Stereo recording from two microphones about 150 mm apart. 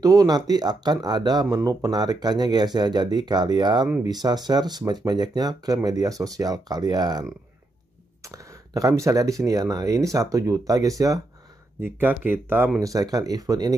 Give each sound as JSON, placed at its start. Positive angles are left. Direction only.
{"t": 0.0, "sound": "speech", "side_deg": -25}
{"t": 11.8, "sound": "speech", "side_deg": -15}